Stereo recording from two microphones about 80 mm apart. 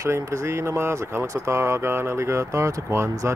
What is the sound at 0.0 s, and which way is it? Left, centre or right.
Speech, right.